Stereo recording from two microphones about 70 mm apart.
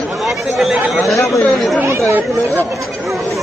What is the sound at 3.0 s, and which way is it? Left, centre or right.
Chatter, centre.